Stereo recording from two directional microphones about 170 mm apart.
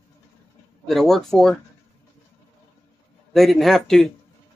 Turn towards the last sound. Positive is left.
turn(degrees=0)  # may be behind; listen again after turning